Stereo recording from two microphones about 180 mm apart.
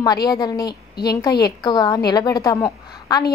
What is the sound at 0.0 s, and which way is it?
A woman's voice, 20° left (ahead or behind).